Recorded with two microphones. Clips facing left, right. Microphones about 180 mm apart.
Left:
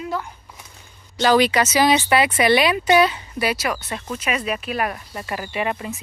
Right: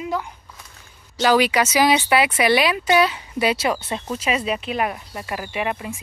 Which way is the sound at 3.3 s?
25° right (ahead or behind).